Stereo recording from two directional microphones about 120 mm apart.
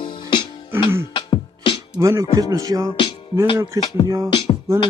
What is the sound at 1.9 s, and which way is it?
Music, 25° right (ahead or behind).